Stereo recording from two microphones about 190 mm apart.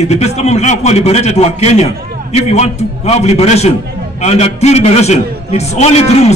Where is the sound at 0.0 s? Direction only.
35° left (ahead or behind).